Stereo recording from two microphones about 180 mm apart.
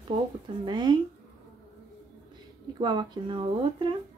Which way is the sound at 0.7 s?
25° right (ahead or behind).